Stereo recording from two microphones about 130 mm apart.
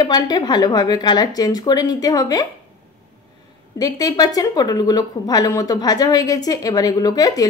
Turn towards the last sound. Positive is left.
turn(degrees=30)  # may be behind; listen again after turning